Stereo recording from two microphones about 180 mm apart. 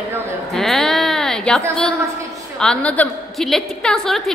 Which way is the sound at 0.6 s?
Centre (ahead or behind).